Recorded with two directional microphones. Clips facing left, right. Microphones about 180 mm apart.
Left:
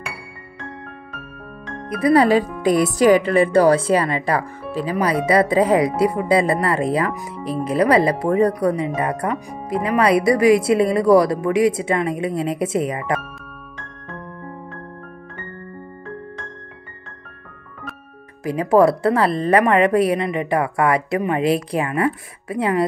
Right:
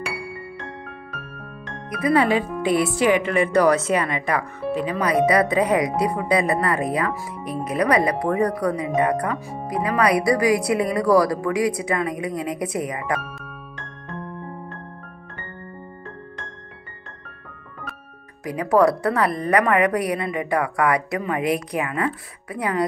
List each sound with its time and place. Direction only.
1.9 s speech: 30° left (ahead or behind)
18.4 s speech: 25° left (ahead or behind)